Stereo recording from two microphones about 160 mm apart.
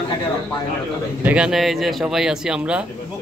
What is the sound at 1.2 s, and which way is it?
Speech, 10° right (ahead or behind).